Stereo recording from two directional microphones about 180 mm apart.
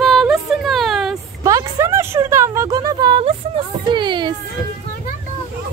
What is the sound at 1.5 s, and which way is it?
A woman's voice, 20° right (ahead or behind).